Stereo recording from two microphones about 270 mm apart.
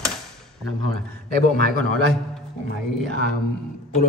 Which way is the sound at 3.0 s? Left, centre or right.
Right.